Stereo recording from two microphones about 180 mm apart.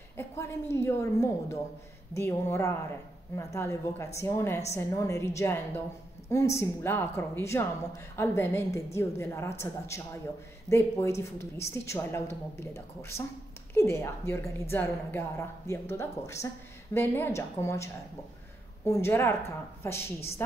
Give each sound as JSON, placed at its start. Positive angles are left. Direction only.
{"t": 0.2, "sound": "a woman's voice", "side_deg": 15}
{"t": 18.9, "sound": "a woman's voice", "side_deg": 15}